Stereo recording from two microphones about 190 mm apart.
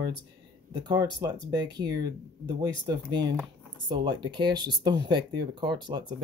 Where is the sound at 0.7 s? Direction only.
20° right (ahead or behind).